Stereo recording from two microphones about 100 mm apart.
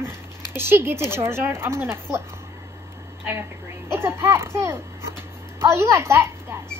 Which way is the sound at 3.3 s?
25° right (ahead or behind).